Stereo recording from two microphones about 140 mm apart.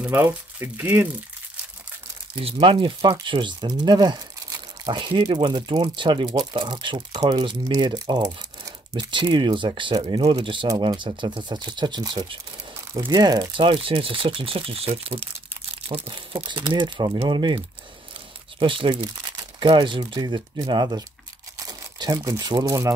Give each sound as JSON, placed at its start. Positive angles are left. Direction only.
{"t": 0.0, "sound": "speech", "side_deg": -10}
{"t": 2.3, "sound": "speech", "side_deg": -40}
{"t": 18.6, "sound": "speech", "side_deg": -35}